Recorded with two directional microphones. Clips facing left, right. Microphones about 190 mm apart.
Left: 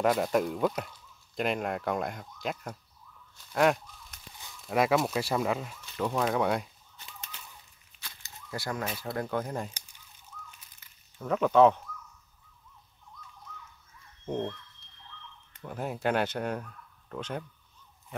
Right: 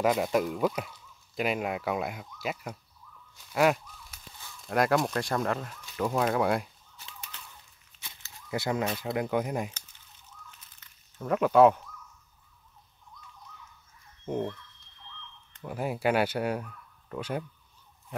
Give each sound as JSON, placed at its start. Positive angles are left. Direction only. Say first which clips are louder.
{"t": 0.0, "sound": "speech", "louder": "even", "side_deg": 0}
{"t": 6.0, "sound": "fowl", "louder": "right 1 dB", "side_deg": 0}
{"t": 8.5, "sound": "speech", "louder": "right 5 dB", "side_deg": -20}
{"t": 11.1, "sound": "speech", "louder": "right 1 dB", "side_deg": -5}
{"t": 14.2, "sound": "dog", "louder": "right 1 dB", "side_deg": -10}
{"t": 15.6, "sound": "speech", "louder": "right 2 dB", "side_deg": -5}